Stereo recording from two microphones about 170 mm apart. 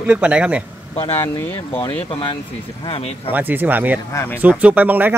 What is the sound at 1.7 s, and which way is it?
Speech, 35° left (ahead or behind).